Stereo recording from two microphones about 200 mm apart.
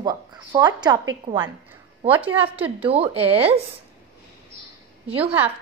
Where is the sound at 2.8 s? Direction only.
30° right (ahead or behind).